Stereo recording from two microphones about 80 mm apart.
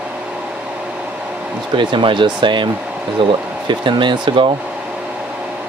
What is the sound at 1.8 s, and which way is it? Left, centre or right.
Speech, right.